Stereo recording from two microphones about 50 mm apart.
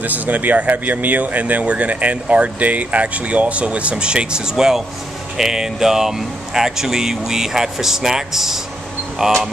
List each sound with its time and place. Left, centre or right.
0.0 s speech: right; by 9.3 s centre